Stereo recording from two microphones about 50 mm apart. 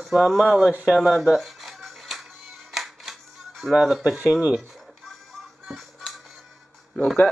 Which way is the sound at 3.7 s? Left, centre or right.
Centre.